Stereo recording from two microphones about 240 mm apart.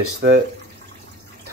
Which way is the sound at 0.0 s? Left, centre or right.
Right.